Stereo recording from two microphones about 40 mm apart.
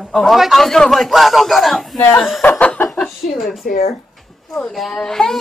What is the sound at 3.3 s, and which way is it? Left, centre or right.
Speech, centre.